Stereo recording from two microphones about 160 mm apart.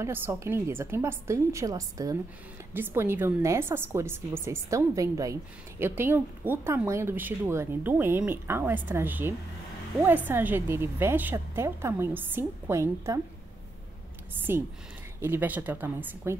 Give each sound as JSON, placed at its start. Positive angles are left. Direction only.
{"t": 0.0, "sound": "a woman's voice", "side_deg": -15}
{"t": 14.5, "sound": "a woman's voice", "side_deg": -15}